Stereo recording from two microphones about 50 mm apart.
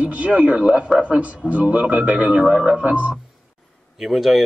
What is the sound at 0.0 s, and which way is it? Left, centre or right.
A man's voice, right.